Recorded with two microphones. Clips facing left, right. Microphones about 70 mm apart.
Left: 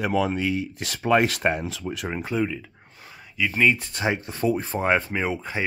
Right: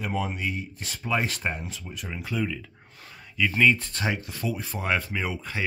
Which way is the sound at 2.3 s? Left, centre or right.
Centre.